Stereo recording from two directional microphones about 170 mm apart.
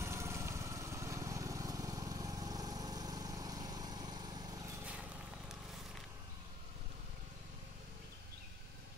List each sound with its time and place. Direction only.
0.0 s lawn mower: 15° right (ahead or behind)